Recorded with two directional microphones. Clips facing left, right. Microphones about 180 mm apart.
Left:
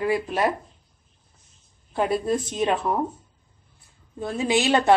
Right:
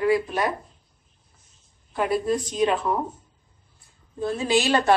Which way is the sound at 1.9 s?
25° left (ahead or behind).